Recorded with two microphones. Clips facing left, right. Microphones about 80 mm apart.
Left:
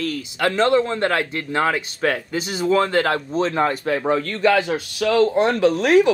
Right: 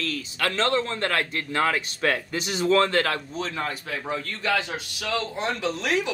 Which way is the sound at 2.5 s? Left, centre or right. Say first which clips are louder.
Left 2 dB; centre.